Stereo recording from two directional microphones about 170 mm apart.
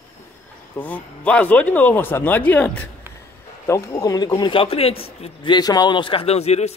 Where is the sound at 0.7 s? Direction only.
10° left (ahead or behind).